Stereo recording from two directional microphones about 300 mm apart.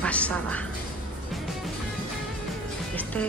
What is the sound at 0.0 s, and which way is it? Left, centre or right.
Speech, centre.